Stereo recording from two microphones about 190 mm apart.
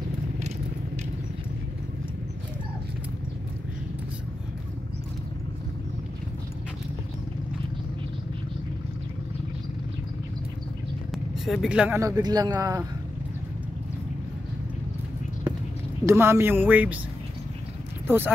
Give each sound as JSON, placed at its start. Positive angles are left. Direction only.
{"t": 11.4, "sound": "speech", "side_deg": 0}
{"t": 16.1, "sound": "speech", "side_deg": -15}
{"t": 18.0, "sound": "speech", "side_deg": -10}